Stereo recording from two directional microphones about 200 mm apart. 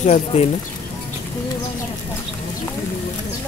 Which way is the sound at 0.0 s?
35° left (ahead or behind).